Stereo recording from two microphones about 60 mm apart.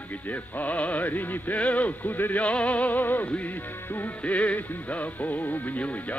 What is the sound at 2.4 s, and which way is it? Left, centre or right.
Speech, left.